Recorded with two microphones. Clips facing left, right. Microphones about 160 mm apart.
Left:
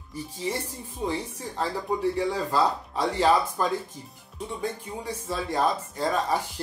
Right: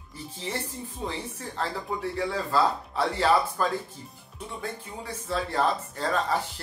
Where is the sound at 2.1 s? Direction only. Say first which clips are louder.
Left 1 dB; 15° left (ahead or behind).